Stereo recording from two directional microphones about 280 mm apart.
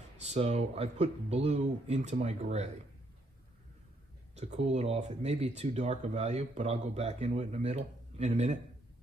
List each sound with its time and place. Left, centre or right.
0.2 s speech: right
4.4 s speech: right